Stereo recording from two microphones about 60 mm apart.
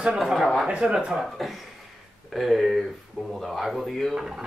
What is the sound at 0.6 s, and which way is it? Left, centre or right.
Speech, centre.